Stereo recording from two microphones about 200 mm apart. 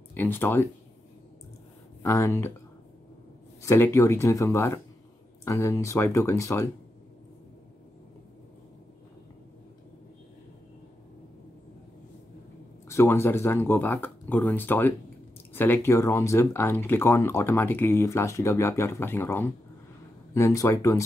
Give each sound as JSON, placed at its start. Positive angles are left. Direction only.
{"t": 0.1, "sound": "speech", "side_deg": 10}
{"t": 2.0, "sound": "speech", "side_deg": 15}
{"t": 3.6, "sound": "speech", "side_deg": 10}
{"t": 12.8, "sound": "speech", "side_deg": 15}